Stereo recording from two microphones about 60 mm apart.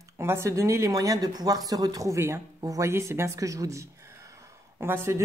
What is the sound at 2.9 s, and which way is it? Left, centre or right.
Speech, right.